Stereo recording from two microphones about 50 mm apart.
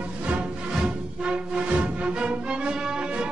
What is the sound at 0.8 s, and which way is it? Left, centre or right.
Music, centre.